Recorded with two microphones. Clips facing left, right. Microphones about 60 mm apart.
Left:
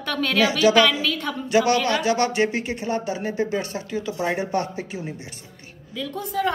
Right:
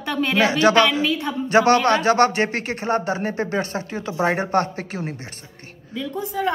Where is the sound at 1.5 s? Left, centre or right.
Right.